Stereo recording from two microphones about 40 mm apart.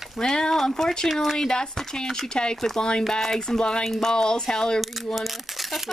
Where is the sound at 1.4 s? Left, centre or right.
Centre.